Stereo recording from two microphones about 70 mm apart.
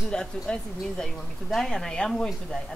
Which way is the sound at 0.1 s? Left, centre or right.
Centre.